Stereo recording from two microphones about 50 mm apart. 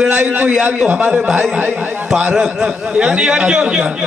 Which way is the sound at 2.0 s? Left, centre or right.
Right.